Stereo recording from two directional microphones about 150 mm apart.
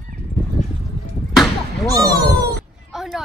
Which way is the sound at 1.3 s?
Centre (ahead or behind).